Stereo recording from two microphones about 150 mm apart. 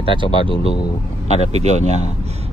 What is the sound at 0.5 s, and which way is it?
Speech, 30° left (ahead or behind).